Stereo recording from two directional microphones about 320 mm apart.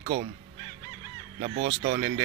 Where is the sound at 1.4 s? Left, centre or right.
Right.